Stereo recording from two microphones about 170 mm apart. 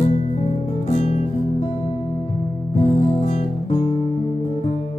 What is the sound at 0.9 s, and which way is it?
Music, 40° left (ahead or behind).